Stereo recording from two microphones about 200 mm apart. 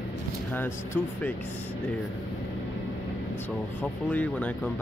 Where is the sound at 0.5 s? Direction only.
10° left (ahead or behind).